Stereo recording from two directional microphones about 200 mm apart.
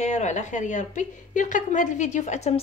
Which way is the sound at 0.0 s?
35° left (ahead or behind).